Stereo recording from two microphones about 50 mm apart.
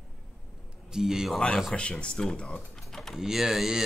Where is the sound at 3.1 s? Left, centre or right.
Centre.